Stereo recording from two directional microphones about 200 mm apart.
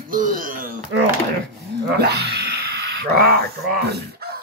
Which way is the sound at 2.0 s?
55° right (ahead or behind).